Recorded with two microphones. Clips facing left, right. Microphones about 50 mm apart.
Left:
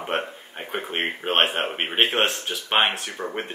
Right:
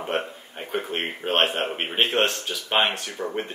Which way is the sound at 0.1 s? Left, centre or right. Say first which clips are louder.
Left 1 dB; left.